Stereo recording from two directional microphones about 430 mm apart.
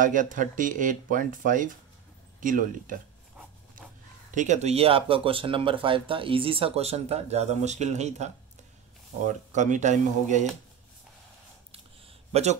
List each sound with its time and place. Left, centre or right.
0.0 s speech: centre
4.4 s speech: centre
9.5 s speech: centre
12.3 s speech: centre